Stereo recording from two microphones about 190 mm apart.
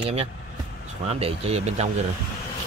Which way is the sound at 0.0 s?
30° right (ahead or behind).